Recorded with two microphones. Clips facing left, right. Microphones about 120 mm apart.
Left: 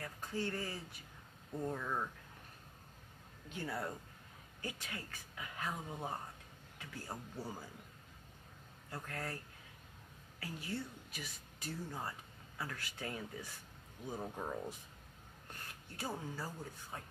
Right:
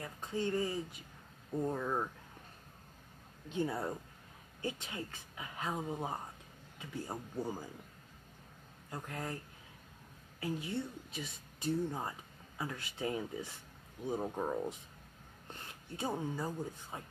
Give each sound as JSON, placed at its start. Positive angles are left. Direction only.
{"t": 0.0, "sound": "speech", "side_deg": -20}
{"t": 3.4, "sound": "speech", "side_deg": -20}
{"t": 8.9, "sound": "speech", "side_deg": -20}
{"t": 10.4, "sound": "speech", "side_deg": -25}